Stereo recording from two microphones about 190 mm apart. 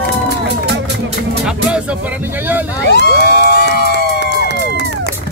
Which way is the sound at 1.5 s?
5° right (ahead or behind).